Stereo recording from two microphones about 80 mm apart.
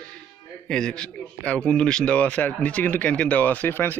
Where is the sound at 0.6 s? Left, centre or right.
Centre.